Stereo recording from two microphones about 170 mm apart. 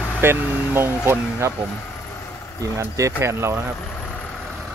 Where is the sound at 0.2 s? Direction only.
15° right (ahead or behind).